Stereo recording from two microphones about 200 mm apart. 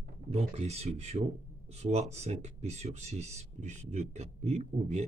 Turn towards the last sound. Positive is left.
turn(degrees=-35)  # may be behind; listen again after turning